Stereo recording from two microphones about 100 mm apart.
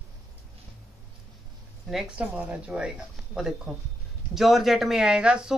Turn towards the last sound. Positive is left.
turn(degrees=-10)  # may be behind; listen again after turning